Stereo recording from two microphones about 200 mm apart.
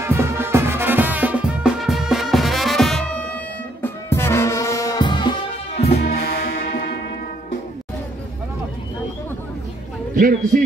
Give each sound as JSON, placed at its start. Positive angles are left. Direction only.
{"t": 0.0, "sound": "music", "side_deg": -15}
{"t": 5.9, "sound": "music", "side_deg": 50}
{"t": 10.1, "sound": "a man's voice", "side_deg": -45}